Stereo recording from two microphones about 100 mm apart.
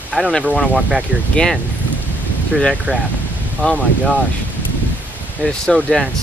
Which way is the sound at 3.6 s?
5° left (ahead or behind).